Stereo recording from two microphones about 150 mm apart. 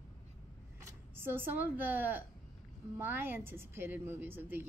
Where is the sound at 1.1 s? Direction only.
15° right (ahead or behind).